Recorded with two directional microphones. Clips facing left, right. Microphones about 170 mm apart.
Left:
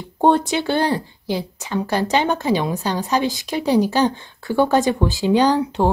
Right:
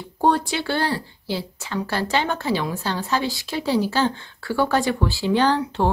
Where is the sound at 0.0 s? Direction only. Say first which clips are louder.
Left 4 dB; 20° left (ahead or behind).